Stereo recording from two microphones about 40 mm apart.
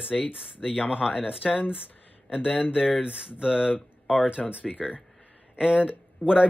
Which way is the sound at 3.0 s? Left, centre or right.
Right.